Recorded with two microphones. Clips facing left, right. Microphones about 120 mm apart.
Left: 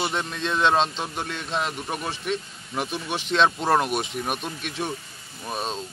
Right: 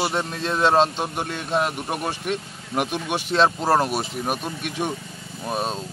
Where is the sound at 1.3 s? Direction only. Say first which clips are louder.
Right 4 dB; 50° right (ahead or behind).